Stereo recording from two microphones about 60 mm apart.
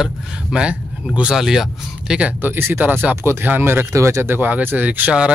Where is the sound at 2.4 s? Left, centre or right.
Right.